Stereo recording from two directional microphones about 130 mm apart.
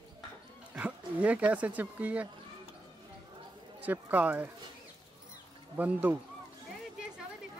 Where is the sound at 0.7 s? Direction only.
10° right (ahead or behind).